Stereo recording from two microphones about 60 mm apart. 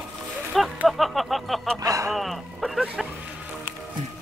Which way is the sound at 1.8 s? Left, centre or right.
Right.